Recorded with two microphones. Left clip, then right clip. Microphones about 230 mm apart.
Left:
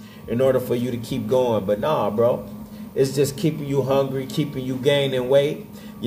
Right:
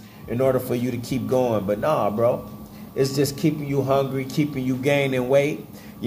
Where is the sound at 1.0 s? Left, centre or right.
Centre.